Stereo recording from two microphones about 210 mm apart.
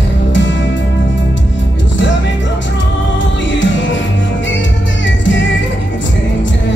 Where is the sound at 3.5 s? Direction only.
60° left (ahead or behind).